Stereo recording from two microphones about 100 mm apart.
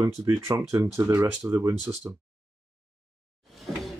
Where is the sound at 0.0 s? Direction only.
30° right (ahead or behind).